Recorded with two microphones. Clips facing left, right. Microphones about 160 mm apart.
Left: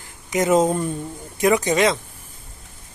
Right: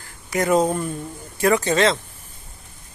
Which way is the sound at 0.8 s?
20° left (ahead or behind).